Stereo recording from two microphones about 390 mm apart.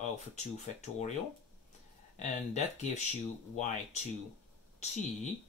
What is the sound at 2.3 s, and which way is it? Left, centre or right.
Speech, centre.